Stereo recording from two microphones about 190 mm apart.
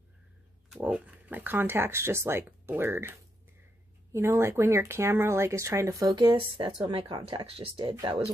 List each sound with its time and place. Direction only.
0.7 s speech: 5° right (ahead or behind)